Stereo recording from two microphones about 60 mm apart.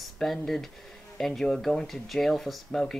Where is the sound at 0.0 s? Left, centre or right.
Centre.